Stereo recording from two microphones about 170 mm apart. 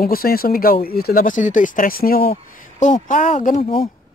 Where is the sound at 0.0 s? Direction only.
60° left (ahead or behind); by 3.6 s 45° left (ahead or behind).